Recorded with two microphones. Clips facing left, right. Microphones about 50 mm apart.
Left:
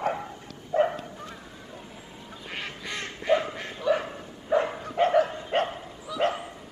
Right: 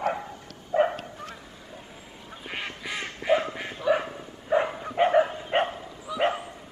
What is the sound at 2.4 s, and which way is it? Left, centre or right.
Goose, centre.